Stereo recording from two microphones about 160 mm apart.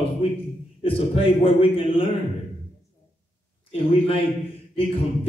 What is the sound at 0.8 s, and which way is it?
Speech, 35° left (ahead or behind).